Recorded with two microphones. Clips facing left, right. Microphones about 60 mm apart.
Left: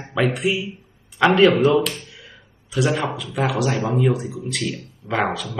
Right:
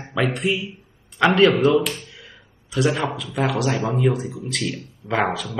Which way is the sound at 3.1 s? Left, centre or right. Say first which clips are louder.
Even; centre.